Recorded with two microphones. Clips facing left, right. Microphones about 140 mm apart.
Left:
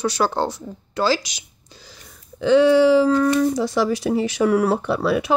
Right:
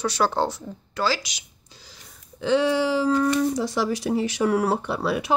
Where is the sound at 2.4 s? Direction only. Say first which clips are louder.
Left 7 dB; 70° left (ahead or behind).